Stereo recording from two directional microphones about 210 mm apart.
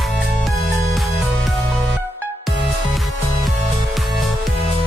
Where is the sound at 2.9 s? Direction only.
Centre (ahead or behind).